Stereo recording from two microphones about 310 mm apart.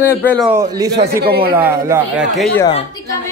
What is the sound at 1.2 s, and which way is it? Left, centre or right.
Speech, right.